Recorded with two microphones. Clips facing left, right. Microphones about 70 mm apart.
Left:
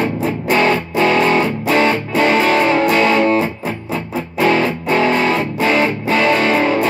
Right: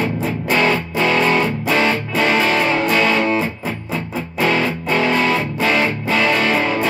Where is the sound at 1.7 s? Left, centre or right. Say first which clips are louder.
Left 4 dB; left.